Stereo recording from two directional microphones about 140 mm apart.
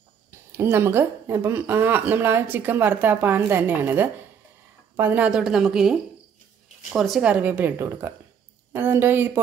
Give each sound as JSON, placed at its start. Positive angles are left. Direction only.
{"t": 0.5, "sound": "a woman's voice", "side_deg": -15}